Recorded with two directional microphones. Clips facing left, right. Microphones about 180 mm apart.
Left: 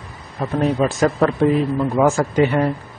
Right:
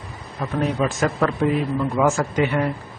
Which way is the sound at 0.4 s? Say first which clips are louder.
Left 4 dB; 35° left (ahead or behind).